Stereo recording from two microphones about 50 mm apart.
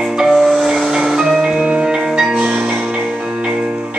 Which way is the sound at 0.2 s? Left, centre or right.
Centre.